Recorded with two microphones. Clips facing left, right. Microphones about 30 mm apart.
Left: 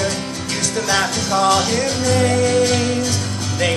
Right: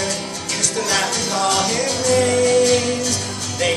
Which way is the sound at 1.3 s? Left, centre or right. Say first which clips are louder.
Left 5 dB; centre.